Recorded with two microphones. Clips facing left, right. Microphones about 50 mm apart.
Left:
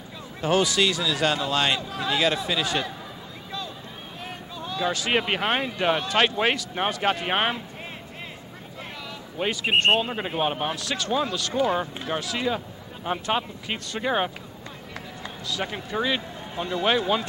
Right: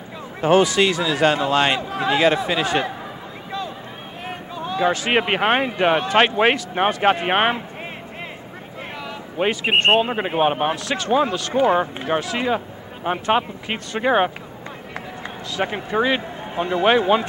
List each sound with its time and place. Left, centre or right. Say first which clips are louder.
0.4 s speech: right 6 dB; right
4.3 s speech: right 8 dB; right
9.4 s a man's voice: right 4 dB; right